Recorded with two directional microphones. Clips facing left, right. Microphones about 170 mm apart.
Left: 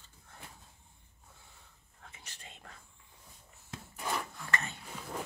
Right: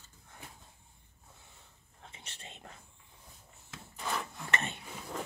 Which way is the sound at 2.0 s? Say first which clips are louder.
Right 2 dB; 25° right (ahead or behind).